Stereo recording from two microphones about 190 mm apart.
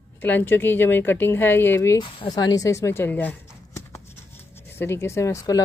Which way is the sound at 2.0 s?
25° left (ahead or behind).